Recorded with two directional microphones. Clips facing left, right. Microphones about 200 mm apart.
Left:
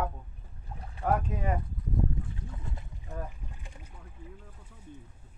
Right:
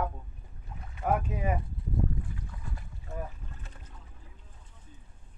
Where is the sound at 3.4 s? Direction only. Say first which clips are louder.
Even; 10° left (ahead or behind).